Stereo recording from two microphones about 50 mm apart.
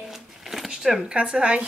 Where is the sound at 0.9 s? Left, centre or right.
Centre.